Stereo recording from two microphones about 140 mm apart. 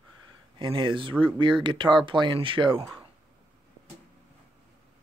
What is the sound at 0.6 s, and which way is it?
Speech, 35° right (ahead or behind).